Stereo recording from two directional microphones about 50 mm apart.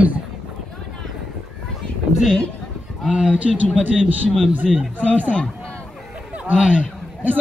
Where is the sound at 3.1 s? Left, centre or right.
Right.